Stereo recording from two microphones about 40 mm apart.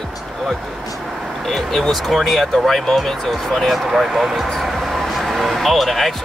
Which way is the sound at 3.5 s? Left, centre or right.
Centre.